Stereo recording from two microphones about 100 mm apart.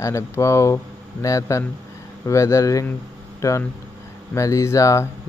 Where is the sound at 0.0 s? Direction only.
30° left (ahead or behind).